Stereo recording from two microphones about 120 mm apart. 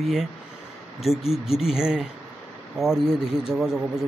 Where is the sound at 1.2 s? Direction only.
55° left (ahead or behind).